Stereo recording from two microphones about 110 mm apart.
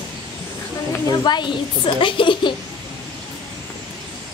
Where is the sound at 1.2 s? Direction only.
40° left (ahead or behind).